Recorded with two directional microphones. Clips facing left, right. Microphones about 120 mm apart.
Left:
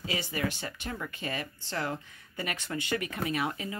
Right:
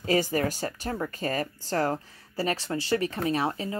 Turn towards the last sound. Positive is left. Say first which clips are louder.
# right 5 dB
turn(degrees=-35)  # may be behind; listen again after turning